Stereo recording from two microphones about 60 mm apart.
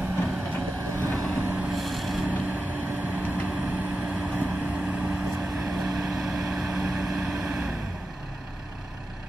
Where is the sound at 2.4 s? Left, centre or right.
Right.